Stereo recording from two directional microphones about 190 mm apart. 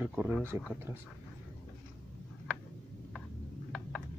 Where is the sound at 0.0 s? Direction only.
5° right (ahead or behind).